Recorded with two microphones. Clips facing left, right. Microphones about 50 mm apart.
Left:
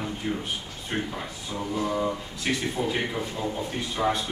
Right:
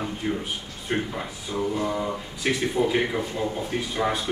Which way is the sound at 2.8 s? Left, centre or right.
Centre.